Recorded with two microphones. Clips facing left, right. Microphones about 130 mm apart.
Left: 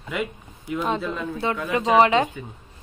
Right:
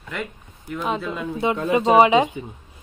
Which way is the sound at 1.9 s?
15° right (ahead or behind).